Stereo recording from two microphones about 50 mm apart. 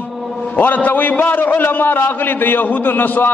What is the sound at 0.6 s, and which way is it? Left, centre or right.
A man's voice, left.